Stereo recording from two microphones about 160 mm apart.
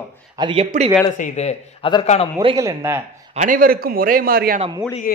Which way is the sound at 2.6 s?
20° right (ahead or behind).